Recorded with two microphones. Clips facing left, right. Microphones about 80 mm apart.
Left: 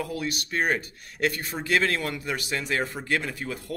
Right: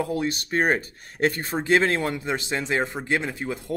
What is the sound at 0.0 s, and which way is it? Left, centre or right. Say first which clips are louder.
A man's voice: right 5 dB; right.